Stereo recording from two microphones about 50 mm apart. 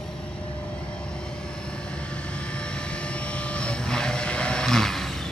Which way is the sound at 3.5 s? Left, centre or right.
Left.